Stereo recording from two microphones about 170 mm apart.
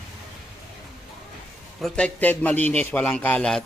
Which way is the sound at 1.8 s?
5° left (ahead or behind).